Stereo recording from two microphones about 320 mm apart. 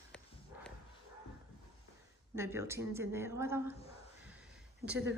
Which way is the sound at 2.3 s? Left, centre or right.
Centre.